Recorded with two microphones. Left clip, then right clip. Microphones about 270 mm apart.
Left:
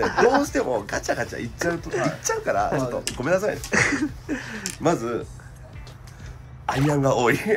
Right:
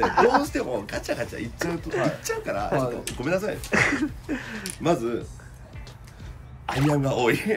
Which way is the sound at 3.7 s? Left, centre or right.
Centre.